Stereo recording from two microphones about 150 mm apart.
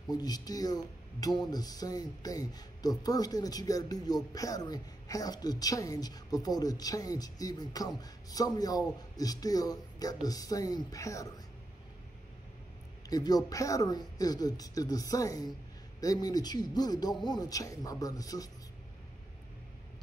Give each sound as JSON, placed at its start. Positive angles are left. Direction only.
{"t": 0.1, "sound": "speech", "side_deg": 25}
{"t": 13.1, "sound": "speech", "side_deg": 25}